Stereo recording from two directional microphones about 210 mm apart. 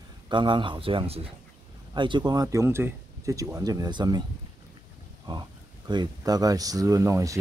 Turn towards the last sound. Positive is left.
turn(degrees=-15)  # may be behind; listen again after turning